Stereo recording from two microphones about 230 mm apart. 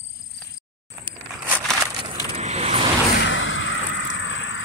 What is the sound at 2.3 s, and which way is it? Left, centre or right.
Vehicle, right.